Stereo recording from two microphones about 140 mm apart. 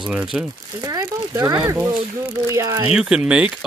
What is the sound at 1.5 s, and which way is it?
Speech, 10° right (ahead or behind).